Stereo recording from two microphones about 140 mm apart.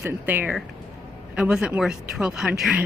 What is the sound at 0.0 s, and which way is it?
Speech, 15° right (ahead or behind).